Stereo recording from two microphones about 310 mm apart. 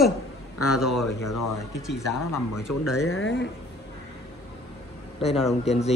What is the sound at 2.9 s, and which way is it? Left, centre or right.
Speech, left.